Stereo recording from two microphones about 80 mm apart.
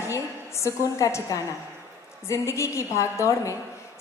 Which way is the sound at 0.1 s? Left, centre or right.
Left.